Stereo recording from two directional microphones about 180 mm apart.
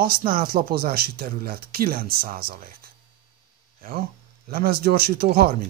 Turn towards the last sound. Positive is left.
turn(degrees=-60)  # may be behind; listen again after turning